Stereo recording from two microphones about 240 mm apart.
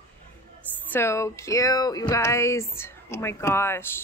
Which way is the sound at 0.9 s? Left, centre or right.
Centre.